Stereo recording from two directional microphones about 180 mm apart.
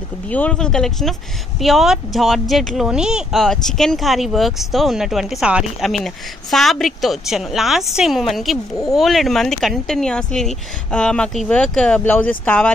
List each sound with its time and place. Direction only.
0.3 s speech: 5° left (ahead or behind)